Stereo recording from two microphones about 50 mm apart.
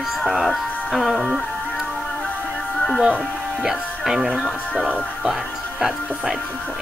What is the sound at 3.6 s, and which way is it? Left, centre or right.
Speech, centre.